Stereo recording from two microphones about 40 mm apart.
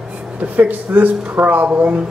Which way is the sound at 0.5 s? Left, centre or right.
Right.